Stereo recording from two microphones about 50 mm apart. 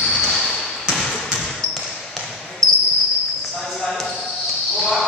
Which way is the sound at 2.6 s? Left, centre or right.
Right.